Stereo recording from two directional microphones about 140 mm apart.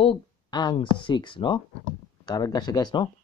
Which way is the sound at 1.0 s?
35° left (ahead or behind).